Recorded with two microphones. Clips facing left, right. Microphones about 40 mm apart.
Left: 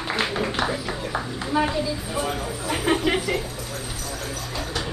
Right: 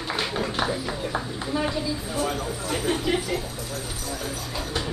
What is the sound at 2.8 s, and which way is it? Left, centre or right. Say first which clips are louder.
Speech: left 4 dB; left.